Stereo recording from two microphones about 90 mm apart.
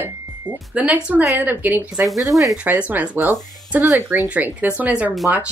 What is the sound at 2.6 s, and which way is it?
Speech, 15° right (ahead or behind).